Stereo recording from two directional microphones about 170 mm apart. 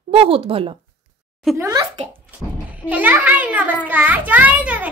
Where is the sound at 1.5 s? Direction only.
20° right (ahead or behind).